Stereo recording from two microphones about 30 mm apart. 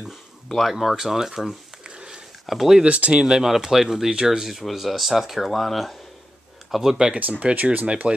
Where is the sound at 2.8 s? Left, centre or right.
Right.